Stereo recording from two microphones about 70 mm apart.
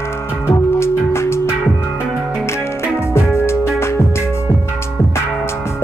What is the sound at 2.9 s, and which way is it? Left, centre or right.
Music, left.